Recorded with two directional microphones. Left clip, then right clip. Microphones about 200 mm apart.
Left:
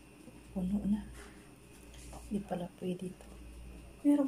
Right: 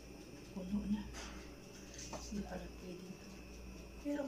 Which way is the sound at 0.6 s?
40° left (ahead or behind).